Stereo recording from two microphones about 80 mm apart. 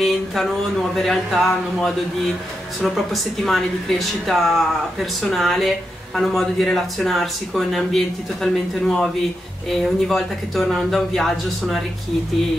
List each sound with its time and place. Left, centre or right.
0.0 s speech: centre